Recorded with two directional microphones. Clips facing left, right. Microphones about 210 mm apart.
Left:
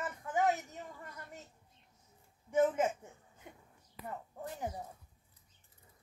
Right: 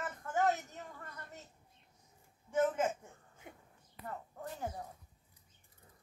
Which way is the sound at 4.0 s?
90° left.